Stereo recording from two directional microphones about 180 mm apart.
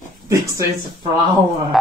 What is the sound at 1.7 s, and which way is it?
Speech, centre (ahead or behind).